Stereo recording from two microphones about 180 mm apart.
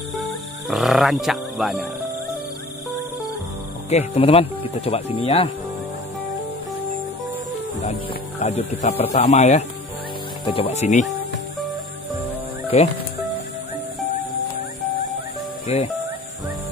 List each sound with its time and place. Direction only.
0.7 s speech: centre (ahead or behind)
3.9 s speech: 35° left (ahead or behind)
8.4 s speech: 35° left (ahead or behind)
12.7 s speech: 35° left (ahead or behind)
15.6 s speech: 35° left (ahead or behind)